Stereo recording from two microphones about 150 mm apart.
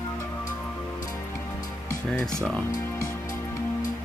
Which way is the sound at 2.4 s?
5° left (ahead or behind).